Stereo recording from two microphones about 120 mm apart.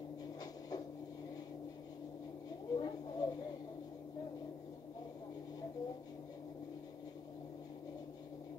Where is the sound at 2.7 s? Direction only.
35° left (ahead or behind).